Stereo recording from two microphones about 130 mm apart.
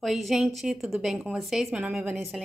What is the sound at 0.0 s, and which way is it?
A woman's voice, centre (ahead or behind).